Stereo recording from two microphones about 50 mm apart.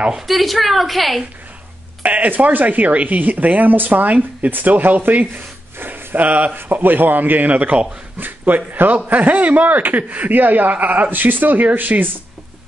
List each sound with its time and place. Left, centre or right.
0.3 s a woman's voice: centre
2.0 s a man's voice: right
5.2 s rub: right
6.1 s a man's voice: right